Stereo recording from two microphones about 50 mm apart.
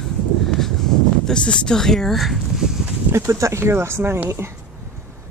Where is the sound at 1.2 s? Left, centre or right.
Centre.